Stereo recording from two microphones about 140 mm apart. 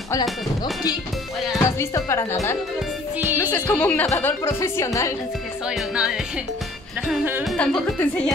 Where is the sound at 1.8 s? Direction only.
20° left (ahead or behind).